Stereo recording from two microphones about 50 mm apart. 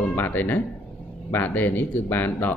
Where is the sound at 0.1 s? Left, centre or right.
Left.